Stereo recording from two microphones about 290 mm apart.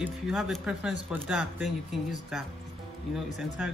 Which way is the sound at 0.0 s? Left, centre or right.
Centre.